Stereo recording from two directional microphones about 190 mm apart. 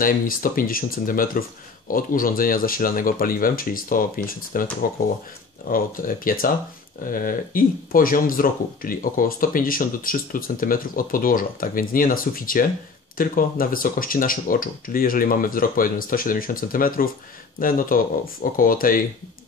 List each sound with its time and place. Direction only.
0.0 s speech: 45° left (ahead or behind)
5.7 s speech: 50° left (ahead or behind)